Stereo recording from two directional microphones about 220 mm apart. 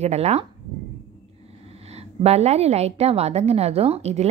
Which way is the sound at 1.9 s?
30° right (ahead or behind).